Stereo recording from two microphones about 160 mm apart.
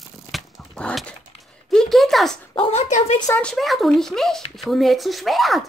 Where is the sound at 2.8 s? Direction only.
45° left (ahead or behind).